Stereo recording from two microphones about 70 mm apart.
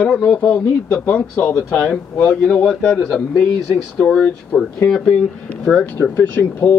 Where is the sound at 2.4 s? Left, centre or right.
Centre.